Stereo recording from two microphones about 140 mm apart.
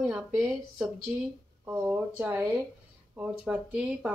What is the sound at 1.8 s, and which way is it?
A woman's voice, 15° right (ahead or behind).